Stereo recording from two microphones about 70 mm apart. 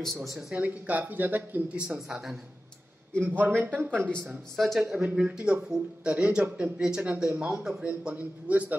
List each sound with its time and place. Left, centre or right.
0.0 s speech: centre
0.6 s speech: right
2.0 s speech: centre
3.3 s speech: right
4.6 s a man's voice: centre
8.1 s speech: right